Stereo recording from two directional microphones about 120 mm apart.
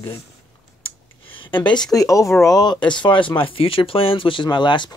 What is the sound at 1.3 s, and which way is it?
Speech, 45° left (ahead or behind).